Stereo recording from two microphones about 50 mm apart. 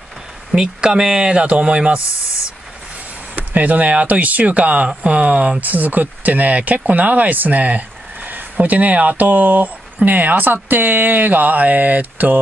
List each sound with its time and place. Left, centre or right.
0.5 s speech: centre
3.3 s speech: right